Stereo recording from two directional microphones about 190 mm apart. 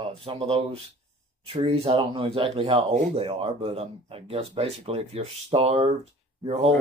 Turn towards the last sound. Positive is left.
turn(degrees=-30)  # may be behind; listen again after turning